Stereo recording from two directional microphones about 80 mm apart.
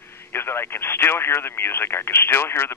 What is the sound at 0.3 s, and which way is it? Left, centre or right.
Speech, left.